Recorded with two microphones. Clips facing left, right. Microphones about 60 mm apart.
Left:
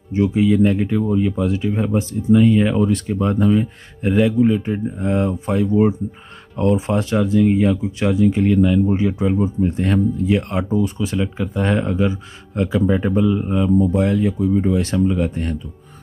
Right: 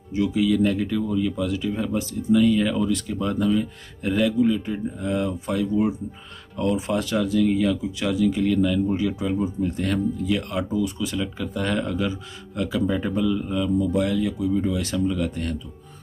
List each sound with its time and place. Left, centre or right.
0.1 s speech: left
4.0 s speech: left